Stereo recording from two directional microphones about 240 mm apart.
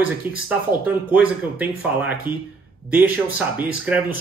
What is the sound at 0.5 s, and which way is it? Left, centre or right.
Speech, centre.